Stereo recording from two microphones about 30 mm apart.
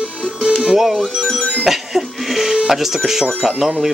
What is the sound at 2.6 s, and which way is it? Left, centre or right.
Speech, centre.